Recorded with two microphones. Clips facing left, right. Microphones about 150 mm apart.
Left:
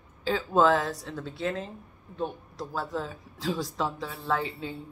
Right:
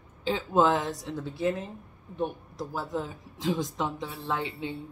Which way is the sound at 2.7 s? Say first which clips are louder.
Even; 20° right (ahead or behind).